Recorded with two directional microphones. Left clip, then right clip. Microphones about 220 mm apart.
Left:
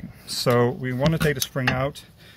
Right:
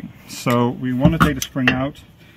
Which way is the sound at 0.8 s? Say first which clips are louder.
Right 6 dB; 35° left (ahead or behind).